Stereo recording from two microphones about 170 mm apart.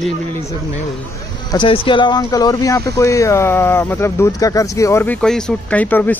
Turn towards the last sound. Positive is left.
turn(degrees=10)  # may be behind; listen again after turning